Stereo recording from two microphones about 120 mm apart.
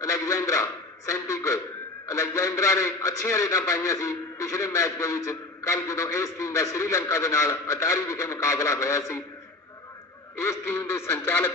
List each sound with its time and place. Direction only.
0.0 s a man's voice: 25° left (ahead or behind)
10.3 s a man's voice: 20° left (ahead or behind)